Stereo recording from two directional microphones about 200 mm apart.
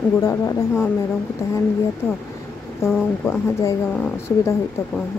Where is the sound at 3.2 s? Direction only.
10° left (ahead or behind).